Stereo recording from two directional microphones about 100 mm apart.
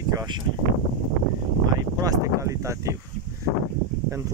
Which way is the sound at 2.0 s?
35° right (ahead or behind).